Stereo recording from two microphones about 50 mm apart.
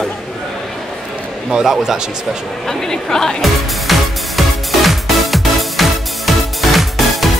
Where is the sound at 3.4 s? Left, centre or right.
Centre.